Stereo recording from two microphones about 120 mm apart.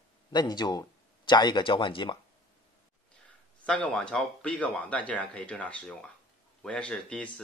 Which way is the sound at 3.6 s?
10° left (ahead or behind).